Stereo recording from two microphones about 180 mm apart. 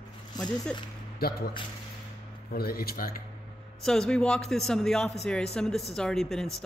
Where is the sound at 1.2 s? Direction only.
55° left (ahead or behind).